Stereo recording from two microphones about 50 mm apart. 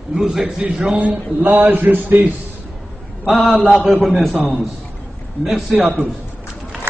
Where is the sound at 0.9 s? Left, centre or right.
Right.